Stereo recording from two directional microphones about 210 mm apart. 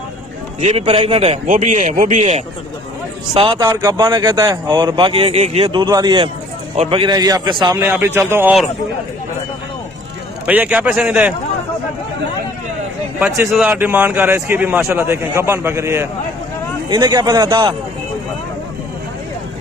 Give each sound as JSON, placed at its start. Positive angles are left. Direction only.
{"t": 0.6, "sound": "a man's voice", "side_deg": -30}
{"t": 3.3, "sound": "a man's voice", "side_deg": -20}
{"t": 10.4, "sound": "a man's voice", "side_deg": -5}
{"t": 13.2, "sound": "a man's voice", "side_deg": -5}